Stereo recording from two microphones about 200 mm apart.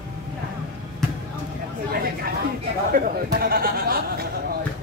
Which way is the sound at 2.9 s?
45° right (ahead or behind).